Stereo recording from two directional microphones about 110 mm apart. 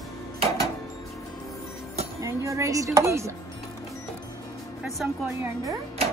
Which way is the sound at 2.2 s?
25° right (ahead or behind).